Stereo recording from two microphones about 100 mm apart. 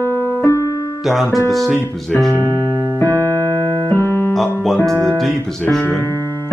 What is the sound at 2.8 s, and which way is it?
Keyboard, 35° right (ahead or behind).